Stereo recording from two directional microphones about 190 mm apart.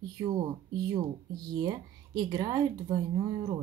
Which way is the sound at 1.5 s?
20° right (ahead or behind).